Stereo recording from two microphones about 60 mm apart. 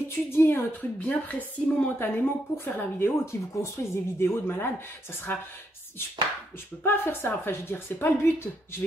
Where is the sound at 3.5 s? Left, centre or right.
Left.